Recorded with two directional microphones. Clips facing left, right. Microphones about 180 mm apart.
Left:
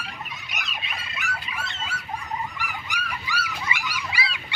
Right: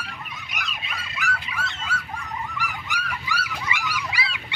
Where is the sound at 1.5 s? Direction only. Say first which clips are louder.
Right 3 dB; 20° left (ahead or behind).